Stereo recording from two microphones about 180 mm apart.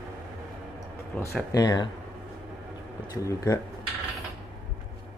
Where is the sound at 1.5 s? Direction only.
20° left (ahead or behind).